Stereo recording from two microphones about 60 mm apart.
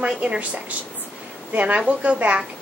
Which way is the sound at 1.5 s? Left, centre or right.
Right.